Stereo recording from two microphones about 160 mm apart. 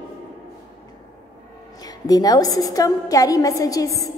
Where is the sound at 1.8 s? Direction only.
25° left (ahead or behind).